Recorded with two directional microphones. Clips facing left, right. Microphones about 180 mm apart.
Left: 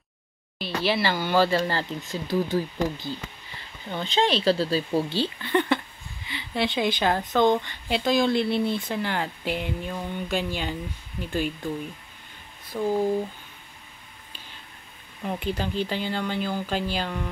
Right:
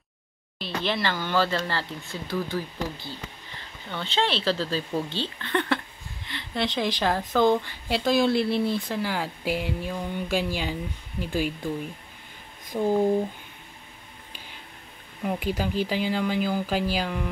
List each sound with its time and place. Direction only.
0.6 s speech: 5° left (ahead or behind)
2.4 s speech: 45° left (ahead or behind)
4.0 s speech: 15° left (ahead or behind); by 11.7 s 10° right (ahead or behind)
12.7 s speech: 15° right (ahead or behind)
15.2 s speech: 10° right (ahead or behind)